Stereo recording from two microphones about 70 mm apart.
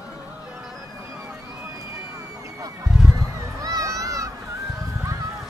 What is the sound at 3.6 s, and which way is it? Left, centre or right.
Crowd, right.